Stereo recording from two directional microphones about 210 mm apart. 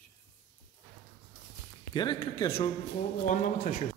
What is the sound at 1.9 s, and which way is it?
Speech, 20° left (ahead or behind).